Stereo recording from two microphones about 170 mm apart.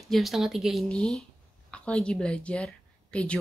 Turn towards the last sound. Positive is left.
turn(degrees=5)  # may be behind; listen again after turning